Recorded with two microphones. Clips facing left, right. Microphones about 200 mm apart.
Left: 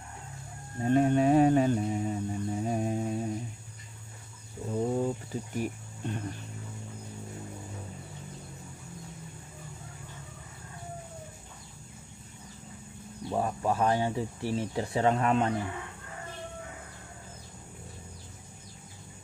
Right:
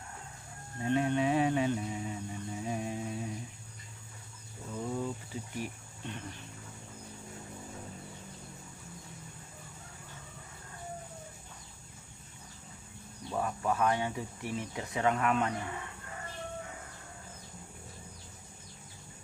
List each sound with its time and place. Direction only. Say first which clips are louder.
0.8 s mantra: left 6 dB; 45° left (ahead or behind)
4.6 s bird: left 7 dB; 40° left (ahead or behind)
5.6 s speech: left 8 dB; 45° left (ahead or behind)
13.3 s speech: left 3 dB; 25° left (ahead or behind)